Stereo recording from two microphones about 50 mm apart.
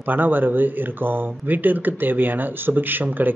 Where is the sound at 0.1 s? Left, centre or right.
Right.